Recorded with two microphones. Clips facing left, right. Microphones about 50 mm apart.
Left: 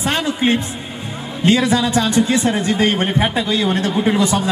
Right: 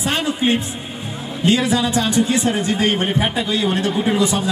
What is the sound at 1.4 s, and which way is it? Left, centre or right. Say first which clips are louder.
Speech: left 2 dB; left.